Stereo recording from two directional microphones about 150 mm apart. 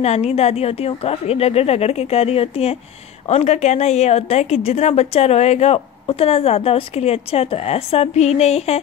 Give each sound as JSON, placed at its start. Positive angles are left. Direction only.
{"t": 0.0, "sound": "a woman's voice", "side_deg": 45}